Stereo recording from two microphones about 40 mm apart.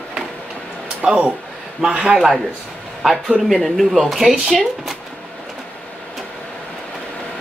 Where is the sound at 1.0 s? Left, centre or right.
Centre.